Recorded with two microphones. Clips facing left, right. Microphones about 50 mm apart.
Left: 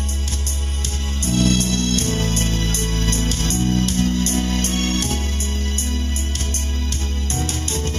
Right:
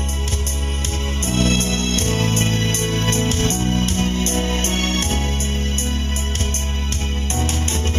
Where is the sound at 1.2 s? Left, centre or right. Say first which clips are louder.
Left 1 dB; right.